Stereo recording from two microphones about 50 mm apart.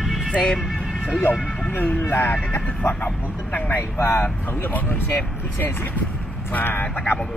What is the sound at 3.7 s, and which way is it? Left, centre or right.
Speech, left.